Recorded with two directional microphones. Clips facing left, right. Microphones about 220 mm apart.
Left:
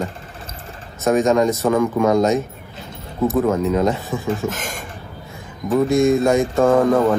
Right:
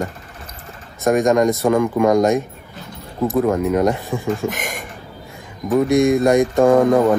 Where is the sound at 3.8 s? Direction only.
15° right (ahead or behind).